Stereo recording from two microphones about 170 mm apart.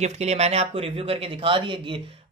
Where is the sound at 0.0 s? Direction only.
40° right (ahead or behind).